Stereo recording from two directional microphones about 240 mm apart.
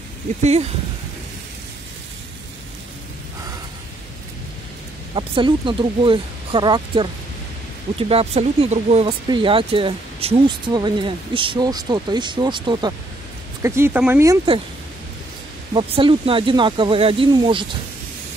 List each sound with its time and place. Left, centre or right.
0.4 s speech: right
5.1 s speech: right
8.1 s speech: right
15.7 s speech: right